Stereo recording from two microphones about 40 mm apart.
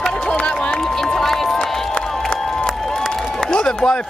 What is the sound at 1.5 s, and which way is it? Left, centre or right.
Crowd, centre.